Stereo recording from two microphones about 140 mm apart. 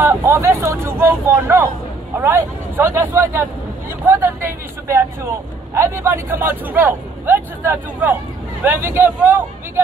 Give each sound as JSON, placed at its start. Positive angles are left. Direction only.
{"t": 0.0, "sound": "speech", "side_deg": -20}